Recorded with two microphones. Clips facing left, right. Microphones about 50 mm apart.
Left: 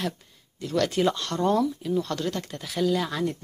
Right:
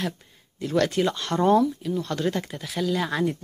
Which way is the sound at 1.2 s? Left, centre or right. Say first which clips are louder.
Right 4 dB; centre.